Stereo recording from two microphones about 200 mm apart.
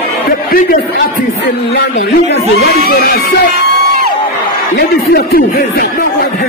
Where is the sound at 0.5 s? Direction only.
45° left (ahead or behind).